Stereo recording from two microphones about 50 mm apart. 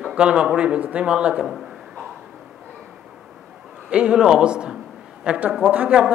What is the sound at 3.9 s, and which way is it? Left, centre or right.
Speech, centre.